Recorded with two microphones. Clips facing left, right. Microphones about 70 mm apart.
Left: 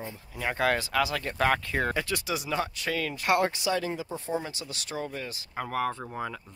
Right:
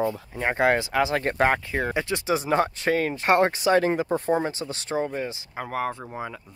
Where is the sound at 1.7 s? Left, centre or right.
Centre; by 5.3 s right.